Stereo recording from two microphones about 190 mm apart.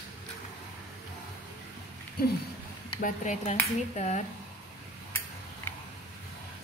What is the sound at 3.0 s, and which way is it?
Speech, 40° left (ahead or behind).